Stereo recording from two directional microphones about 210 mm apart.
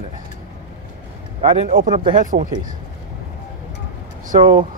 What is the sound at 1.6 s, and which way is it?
Speech, 40° right (ahead or behind).